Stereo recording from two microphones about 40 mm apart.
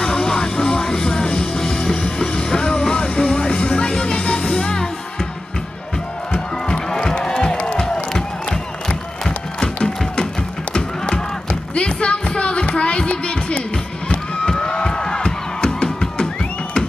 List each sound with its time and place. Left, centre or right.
0.0 s music: left
6.7 s run: centre
7.6 s music: centre
11.7 s a sound: left
14.5 s music: centre